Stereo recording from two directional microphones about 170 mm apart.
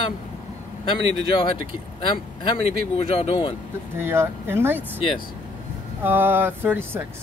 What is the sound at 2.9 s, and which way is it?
Speech, 30° left (ahead or behind).